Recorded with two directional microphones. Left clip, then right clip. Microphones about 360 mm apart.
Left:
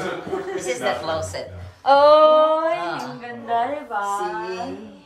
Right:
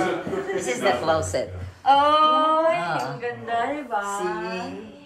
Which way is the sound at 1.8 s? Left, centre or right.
Centre.